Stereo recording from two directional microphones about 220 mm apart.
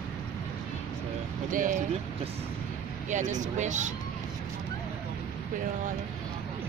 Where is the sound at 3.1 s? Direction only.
35° right (ahead or behind).